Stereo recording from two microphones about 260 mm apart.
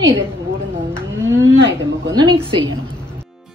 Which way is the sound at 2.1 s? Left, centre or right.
Centre.